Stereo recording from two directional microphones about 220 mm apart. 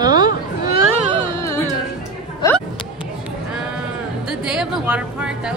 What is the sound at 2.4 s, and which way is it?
Speech, 15° left (ahead or behind).